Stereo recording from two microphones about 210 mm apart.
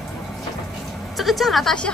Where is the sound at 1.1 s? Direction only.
Centre (ahead or behind).